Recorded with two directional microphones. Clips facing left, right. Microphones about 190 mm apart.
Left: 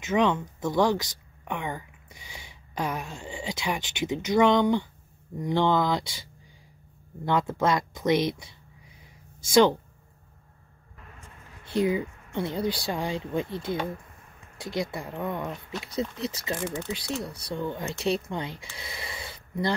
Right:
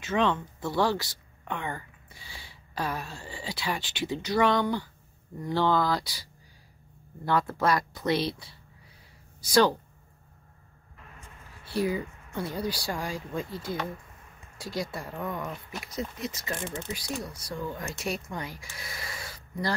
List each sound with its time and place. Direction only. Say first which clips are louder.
0.0 s speech: left 3 dB; 15° left (ahead or behind)
7.2 s speech: left 1 dB; 20° left (ahead or behind)
11.6 s speech: left 3 dB; 20° left (ahead or behind)